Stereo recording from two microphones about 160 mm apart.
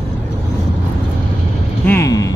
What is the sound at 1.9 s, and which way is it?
Music, 20° left (ahead or behind).